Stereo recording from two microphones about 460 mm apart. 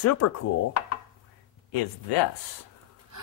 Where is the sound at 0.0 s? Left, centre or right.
Left.